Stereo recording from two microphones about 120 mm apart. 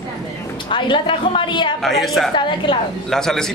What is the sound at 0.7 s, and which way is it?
A woman's voice, 45° left (ahead or behind).